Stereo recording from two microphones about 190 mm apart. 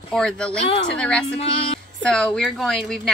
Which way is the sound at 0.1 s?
5° left (ahead or behind).